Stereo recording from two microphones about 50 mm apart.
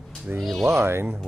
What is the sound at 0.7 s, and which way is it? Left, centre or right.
Speech, right.